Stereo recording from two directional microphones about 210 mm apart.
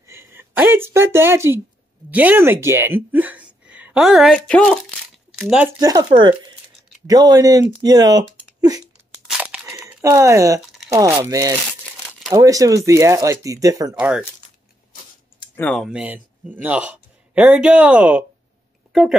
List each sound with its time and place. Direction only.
0.0 s a woman's voice: 10° right (ahead or behind)
5.8 s speech: 15° right (ahead or behind)
9.3 s a sound: 5° right (ahead or behind)
10.9 s speech: 15° right (ahead or behind)
13.9 s speech: 5° right (ahead or behind)
15.5 s speech: 5° left (ahead or behind)